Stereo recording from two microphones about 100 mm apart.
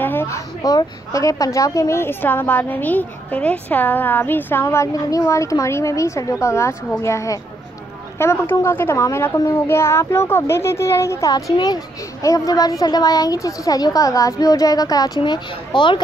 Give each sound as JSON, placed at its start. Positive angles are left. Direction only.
{"t": 0.0, "sound": "speech", "side_deg": 20}
{"t": 0.6, "sound": "a woman's voice", "side_deg": 40}
{"t": 15.1, "sound": "speech", "side_deg": 50}